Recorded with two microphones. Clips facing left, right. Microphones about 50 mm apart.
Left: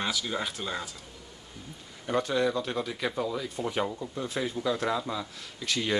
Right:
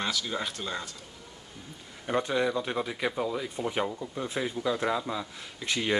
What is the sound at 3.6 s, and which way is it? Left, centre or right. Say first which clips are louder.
Speech: left 1 dB; centre.